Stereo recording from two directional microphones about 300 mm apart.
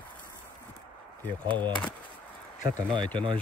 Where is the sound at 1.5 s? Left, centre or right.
Centre.